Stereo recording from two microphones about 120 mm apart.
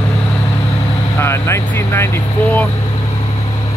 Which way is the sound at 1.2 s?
20° left (ahead or behind).